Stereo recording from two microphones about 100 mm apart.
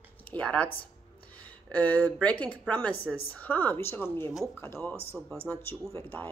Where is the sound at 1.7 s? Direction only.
15° left (ahead or behind).